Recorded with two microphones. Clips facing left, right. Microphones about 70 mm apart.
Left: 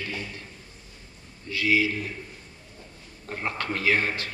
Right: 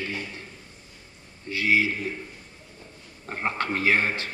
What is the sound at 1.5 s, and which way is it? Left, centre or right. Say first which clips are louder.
Mantra: right 1 dB; right.